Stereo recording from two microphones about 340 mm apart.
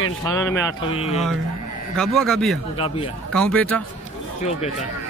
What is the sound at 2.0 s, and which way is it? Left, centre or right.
Speech, centre.